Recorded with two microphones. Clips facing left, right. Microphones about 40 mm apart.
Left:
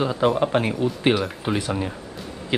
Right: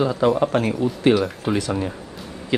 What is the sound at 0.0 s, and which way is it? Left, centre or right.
Speech, centre.